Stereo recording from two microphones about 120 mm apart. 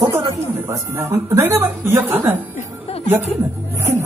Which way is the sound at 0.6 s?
25° right (ahead or behind).